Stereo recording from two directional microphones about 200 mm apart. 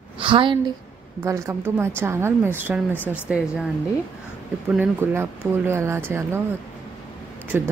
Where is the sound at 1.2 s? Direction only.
15° right (ahead or behind).